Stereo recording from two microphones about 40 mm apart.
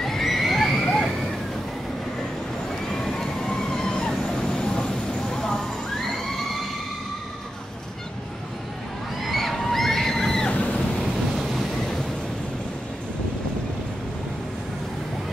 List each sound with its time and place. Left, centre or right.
0.0 s neigh: centre
2.9 s train: centre
4.3 s vehicle: centre
6.0 s a sound: centre
9.2 s a sound: centre
10.5 s ocean: left
11.3 s waves: centre